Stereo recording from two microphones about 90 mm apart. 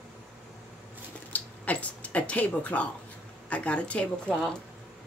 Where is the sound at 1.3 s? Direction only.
15° left (ahead or behind).